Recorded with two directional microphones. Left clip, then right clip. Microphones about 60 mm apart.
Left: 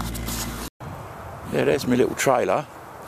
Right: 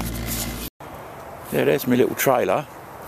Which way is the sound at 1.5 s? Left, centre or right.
Centre.